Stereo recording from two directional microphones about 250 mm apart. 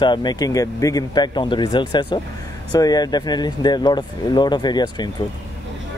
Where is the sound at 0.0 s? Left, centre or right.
Centre.